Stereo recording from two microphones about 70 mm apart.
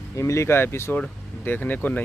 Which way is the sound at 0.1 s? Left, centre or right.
Left.